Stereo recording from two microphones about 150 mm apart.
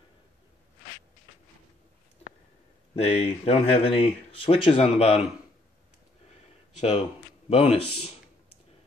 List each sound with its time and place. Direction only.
3.0 s speech: 45° left (ahead or behind)
6.8 s speech: 45° left (ahead or behind)